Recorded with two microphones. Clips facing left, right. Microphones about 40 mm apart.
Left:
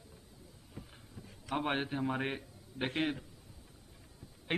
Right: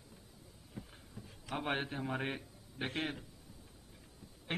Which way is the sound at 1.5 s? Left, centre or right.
Centre.